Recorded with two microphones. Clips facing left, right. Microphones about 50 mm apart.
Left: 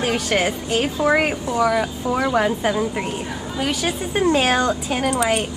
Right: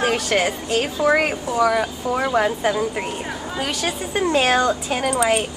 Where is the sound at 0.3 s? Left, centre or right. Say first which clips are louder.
Even; centre.